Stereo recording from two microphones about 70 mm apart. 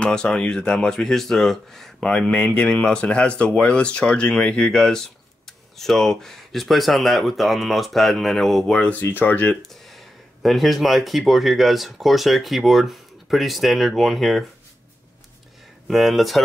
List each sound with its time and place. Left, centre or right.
0.0 s speech: centre
9.0 s speech: left
9.6 s speech: centre
15.9 s speech: centre